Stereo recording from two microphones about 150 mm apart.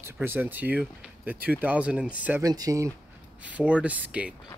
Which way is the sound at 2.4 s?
25° right (ahead or behind).